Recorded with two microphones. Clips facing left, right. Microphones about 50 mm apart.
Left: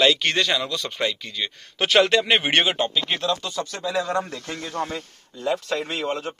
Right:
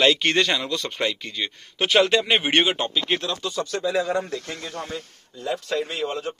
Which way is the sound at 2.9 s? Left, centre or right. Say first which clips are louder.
Left 1 dB; centre.